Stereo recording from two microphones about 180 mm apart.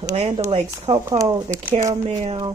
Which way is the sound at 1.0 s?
15° right (ahead or behind).